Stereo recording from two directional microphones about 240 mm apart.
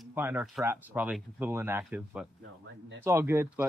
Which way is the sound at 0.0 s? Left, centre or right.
Centre.